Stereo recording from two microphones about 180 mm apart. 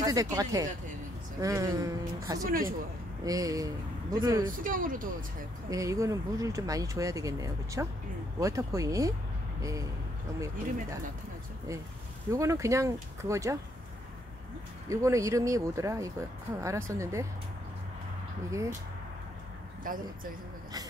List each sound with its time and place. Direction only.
0.0 s speech: 20° right (ahead or behind)
2.4 s speech: 50° right (ahead or behind)
3.3 s speech: 20° right (ahead or behind)
4.5 s speech: 50° right (ahead or behind)
5.7 s speech: 20° right (ahead or behind)
12.3 s speech: 15° right (ahead or behind)
14.9 s speech: 15° right (ahead or behind)
18.5 s speech: 15° right (ahead or behind)
19.9 s speech: 50° right (ahead or behind)